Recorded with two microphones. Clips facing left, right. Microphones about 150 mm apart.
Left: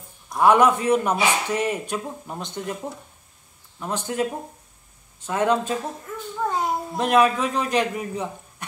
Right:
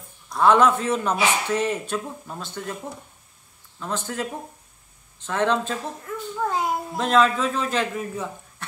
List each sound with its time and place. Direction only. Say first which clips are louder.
0.3 s a man's voice: left 1 dB; 15° left (ahead or behind)
6.4 s child singing: left 1 dB; centre (ahead or behind)
7.0 s a man's voice: left 1 dB; 20° left (ahead or behind)